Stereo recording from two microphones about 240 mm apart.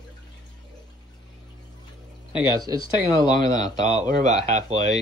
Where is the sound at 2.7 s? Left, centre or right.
Centre.